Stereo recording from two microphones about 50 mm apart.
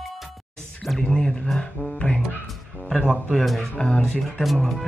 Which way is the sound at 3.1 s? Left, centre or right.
Centre.